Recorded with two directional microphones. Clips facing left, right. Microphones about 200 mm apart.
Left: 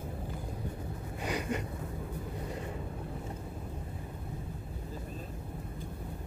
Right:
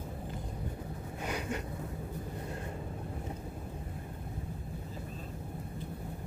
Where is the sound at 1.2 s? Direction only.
10° left (ahead or behind).